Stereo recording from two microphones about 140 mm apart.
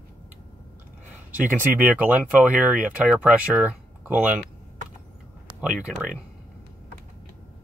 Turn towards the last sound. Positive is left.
turn(degrees=-5)  # may be behind; listen again after turning